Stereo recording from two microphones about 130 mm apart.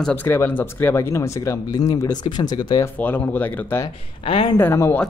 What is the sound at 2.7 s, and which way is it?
Speech, 15° left (ahead or behind).